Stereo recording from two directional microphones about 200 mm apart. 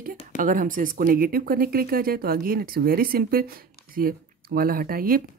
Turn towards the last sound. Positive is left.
turn(degrees=-45)  # may be behind; listen again after turning